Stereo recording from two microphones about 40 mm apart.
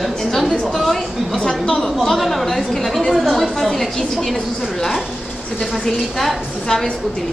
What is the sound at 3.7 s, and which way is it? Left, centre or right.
Speech, centre.